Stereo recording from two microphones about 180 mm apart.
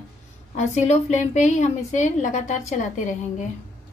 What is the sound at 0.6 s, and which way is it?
A woman's voice, 40° left (ahead or behind).